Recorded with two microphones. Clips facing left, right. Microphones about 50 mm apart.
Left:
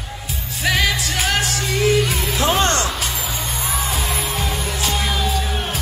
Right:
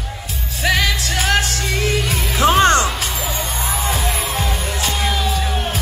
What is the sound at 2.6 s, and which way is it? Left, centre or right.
Music, right.